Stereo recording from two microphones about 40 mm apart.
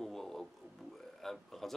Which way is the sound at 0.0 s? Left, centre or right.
Centre.